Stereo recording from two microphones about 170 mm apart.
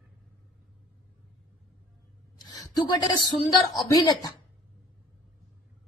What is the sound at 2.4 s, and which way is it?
A woman's voice, 25° left (ahead or behind).